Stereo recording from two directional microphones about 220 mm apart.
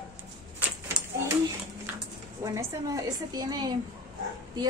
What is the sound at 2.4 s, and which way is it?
Speech, 15° right (ahead or behind).